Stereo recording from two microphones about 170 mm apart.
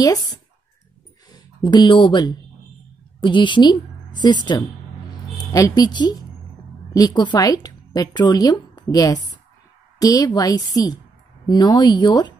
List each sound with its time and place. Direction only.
0.0 s a woman's voice: 20° left (ahead or behind)